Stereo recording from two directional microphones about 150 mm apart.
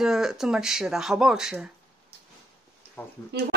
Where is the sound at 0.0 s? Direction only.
5° right (ahead or behind).